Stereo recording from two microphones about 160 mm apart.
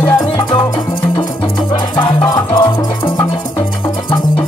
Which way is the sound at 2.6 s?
30° left (ahead or behind).